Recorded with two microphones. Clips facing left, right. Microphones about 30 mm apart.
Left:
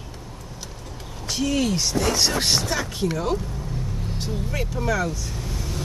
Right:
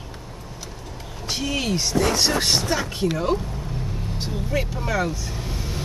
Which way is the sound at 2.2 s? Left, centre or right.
Centre.